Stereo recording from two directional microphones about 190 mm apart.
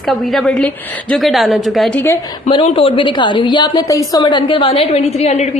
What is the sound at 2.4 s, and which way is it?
A woman's voice, 30° left (ahead or behind).